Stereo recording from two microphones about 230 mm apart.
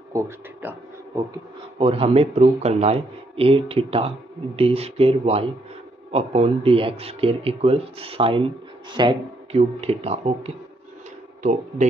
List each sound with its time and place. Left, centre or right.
0.1 s speech: centre
1.8 s a man's voice: right